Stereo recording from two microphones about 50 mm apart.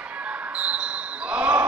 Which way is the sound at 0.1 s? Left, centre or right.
Right.